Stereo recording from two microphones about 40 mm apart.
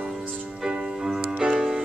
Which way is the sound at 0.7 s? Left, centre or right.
Right.